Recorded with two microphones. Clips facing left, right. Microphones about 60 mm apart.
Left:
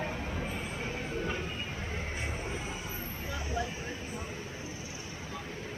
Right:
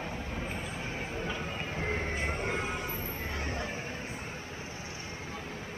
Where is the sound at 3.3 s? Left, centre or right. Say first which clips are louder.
Left 3 dB; right.